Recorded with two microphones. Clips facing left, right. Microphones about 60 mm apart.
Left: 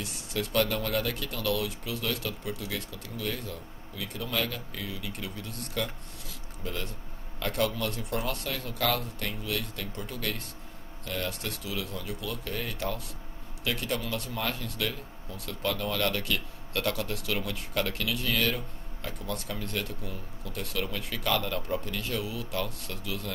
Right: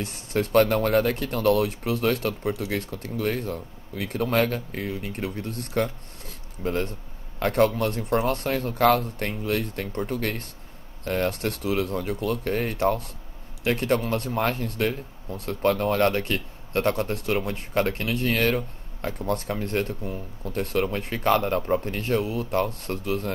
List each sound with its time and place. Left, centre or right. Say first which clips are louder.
0.0 s speech: right 7 dB; right